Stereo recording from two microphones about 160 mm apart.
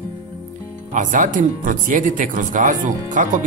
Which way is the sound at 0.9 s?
55° right (ahead or behind).